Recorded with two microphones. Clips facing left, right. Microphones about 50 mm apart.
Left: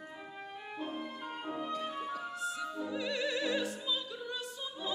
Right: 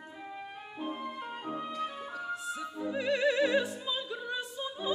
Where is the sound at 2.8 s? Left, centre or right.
Right.